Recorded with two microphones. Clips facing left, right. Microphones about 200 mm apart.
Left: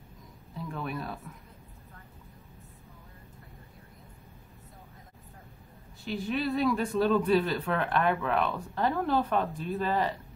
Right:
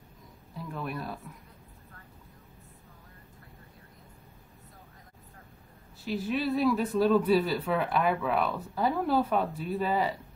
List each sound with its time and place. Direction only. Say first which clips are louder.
0.6 s speech: left 1 dB; centre (ahead or behind)
6.0 s speech: right 1 dB; centre (ahead or behind)